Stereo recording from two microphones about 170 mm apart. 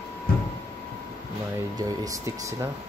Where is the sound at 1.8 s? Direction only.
20° right (ahead or behind).